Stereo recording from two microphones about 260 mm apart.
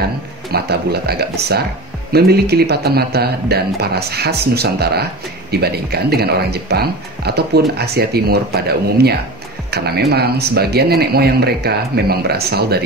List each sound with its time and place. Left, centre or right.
0.5 s speech: right